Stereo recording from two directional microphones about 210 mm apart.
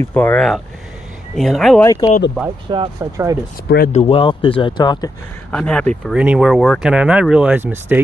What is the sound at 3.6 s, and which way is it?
Speech, 45° left (ahead or behind).